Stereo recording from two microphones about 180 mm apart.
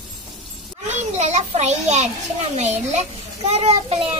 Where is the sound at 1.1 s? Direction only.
40° right (ahead or behind).